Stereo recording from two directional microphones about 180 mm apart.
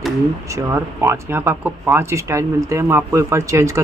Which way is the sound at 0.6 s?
10° right (ahead or behind).